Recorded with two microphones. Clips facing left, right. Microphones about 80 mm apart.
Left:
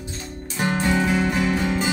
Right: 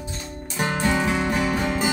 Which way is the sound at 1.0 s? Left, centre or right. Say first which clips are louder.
Left 1 dB; centre.